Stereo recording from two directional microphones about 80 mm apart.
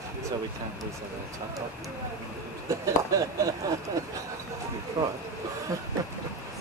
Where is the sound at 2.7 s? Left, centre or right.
Right.